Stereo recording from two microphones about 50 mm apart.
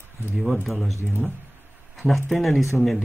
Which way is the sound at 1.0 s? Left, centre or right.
Right.